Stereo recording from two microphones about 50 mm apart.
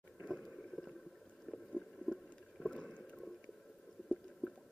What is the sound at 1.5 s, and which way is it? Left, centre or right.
Boat, centre.